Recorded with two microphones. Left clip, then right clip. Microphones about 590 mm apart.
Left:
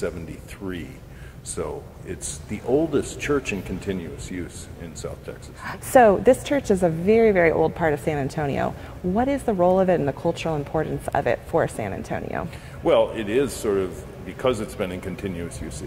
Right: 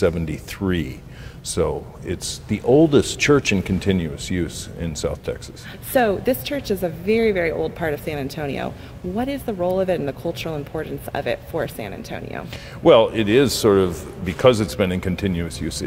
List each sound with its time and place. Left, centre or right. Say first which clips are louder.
0.6 s speech: right 9 dB; right
5.9 s speech: left 4 dB; left
12.8 s a man's voice: right 6 dB; right